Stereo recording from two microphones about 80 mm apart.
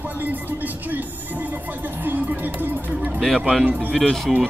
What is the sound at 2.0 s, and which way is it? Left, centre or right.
Music, right.